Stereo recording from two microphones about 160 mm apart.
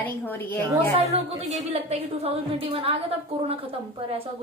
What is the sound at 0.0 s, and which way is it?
Speech, 10° left (ahead or behind).